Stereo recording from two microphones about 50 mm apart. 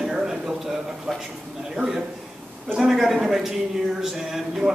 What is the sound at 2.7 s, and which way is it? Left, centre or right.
Speech, centre.